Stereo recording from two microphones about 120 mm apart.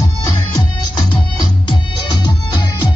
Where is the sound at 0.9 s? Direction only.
35° left (ahead or behind).